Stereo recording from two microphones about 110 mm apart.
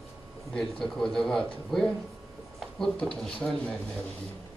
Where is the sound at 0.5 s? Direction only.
5° left (ahead or behind).